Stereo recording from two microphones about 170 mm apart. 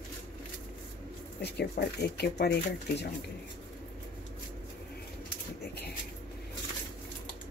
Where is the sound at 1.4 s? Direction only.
70° left (ahead or behind).